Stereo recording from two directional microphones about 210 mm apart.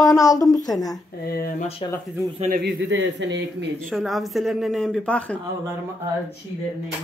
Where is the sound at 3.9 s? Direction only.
Centre (ahead or behind).